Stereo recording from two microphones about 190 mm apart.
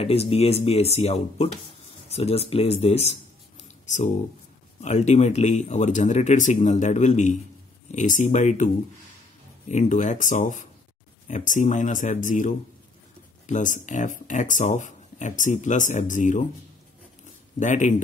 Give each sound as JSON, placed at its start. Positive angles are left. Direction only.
{"t": 0.0, "sound": "speech", "side_deg": 30}
{"t": 2.5, "sound": "a sound", "side_deg": 35}
{"t": 4.8, "sound": "speech", "side_deg": 35}
{"t": 9.7, "sound": "speech", "side_deg": 40}
{"t": 17.6, "sound": "speech", "side_deg": 40}